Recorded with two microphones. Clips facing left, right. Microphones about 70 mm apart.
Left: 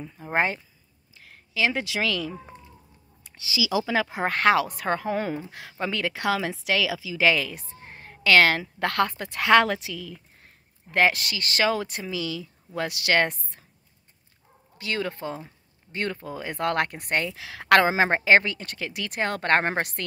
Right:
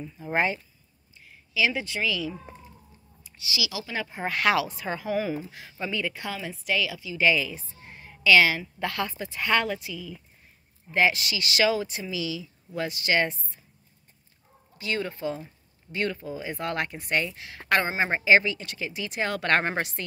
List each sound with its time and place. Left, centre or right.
0.2 s speech: left
1.1 s a sound: left
1.5 s speech: left
1.9 s a woman's voice: left
2.1 s speech: left
3.9 s speech: left
4.3 s speech: left
4.6 s a woman's voice: left
7.3 s speech: left
7.8 s a woman's voice: left
9.4 s a woman's voice: left
10.9 s speech: left
14.8 s speech: left
17.3 s speech: left